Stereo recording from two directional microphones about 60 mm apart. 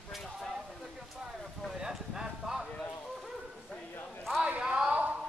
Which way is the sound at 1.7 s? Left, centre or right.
Centre.